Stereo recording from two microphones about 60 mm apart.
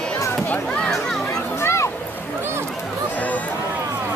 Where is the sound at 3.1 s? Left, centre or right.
Left.